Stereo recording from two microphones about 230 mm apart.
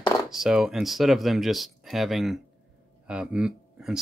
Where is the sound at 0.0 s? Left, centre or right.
Centre.